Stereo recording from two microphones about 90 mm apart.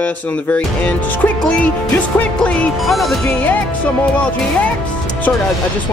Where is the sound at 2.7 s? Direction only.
Centre (ahead or behind).